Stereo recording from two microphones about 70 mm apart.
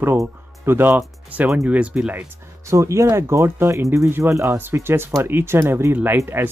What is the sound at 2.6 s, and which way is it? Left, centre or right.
Speech, right.